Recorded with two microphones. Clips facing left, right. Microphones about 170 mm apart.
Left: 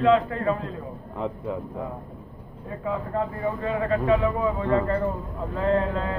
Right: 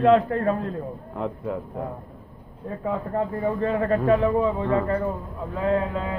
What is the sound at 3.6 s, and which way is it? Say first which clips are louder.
Speech: right 2 dB; 45° right (ahead or behind).